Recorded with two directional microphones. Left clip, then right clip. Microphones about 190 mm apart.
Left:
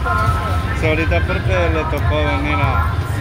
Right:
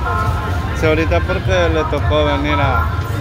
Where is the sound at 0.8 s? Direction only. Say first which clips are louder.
Right 4 dB; 20° right (ahead or behind).